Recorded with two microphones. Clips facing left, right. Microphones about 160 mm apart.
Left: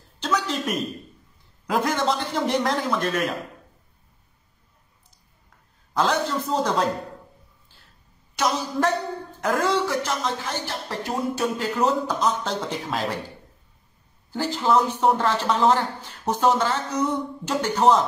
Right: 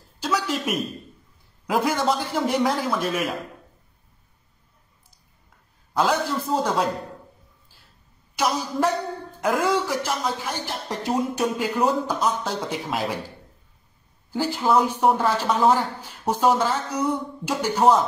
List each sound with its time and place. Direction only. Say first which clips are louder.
0.2 s a sound: even; 10° right (ahead or behind)
1.7 s a woman's voice: right 1 dB; 10° right (ahead or behind)
5.9 s a woman's voice: even; 10° right (ahead or behind)
8.4 s a woman's voice: even; 10° right (ahead or behind)
14.3 s a woman's voice: right 1 dB; 10° right (ahead or behind)